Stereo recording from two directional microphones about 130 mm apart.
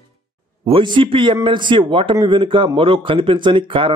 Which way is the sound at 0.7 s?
40° right (ahead or behind).